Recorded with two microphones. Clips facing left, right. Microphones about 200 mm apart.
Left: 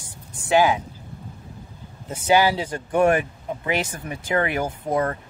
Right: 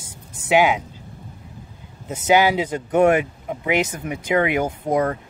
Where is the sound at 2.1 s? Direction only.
20° right (ahead or behind).